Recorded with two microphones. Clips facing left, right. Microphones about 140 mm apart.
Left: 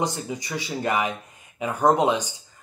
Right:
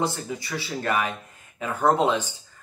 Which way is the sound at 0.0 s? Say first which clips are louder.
Even; 15° left (ahead or behind).